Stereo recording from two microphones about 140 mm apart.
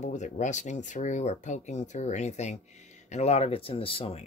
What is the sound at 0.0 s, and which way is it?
Speech, 60° left (ahead or behind).